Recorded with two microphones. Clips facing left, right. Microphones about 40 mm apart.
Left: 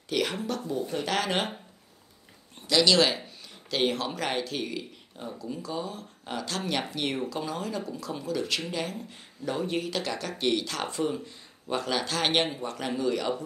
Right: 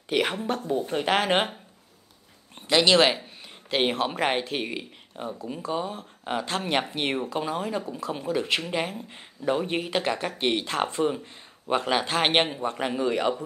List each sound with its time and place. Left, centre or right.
0.1 s speech: right
2.7 s a man's voice: right